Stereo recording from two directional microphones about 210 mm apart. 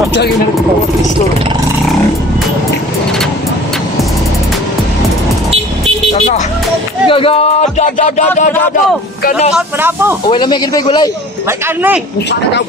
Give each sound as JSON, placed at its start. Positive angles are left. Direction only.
{"t": 6.1, "sound": "speech", "side_deg": 35}
{"t": 9.5, "sound": "speech", "side_deg": -10}
{"t": 10.3, "sound": "speech", "side_deg": 20}